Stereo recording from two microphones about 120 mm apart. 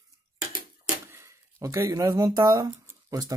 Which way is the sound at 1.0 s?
20° right (ahead or behind).